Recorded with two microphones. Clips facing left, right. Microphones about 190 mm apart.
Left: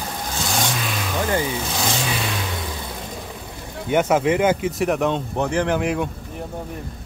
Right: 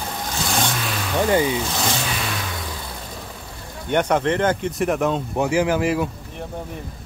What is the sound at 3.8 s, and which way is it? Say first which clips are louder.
Speech: left 1 dB; 5° left (ahead or behind).